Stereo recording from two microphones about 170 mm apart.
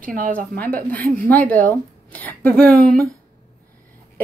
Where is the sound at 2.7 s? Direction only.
60° right (ahead or behind).